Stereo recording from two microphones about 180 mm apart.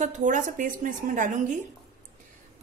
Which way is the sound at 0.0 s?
45° right (ahead or behind).